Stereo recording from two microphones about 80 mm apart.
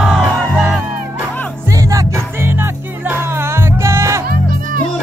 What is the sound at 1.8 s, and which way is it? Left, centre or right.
Music, right.